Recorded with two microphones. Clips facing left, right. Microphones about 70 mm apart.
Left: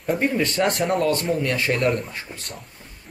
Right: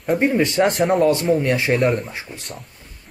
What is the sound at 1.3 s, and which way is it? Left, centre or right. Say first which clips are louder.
Speech: right 5 dB; centre.